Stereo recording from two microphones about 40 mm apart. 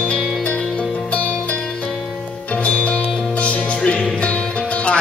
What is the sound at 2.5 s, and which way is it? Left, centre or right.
Music, left.